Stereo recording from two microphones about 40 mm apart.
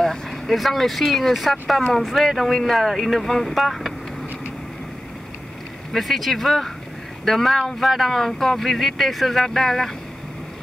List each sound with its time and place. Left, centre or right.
0.0 s speech: centre
5.9 s speech: centre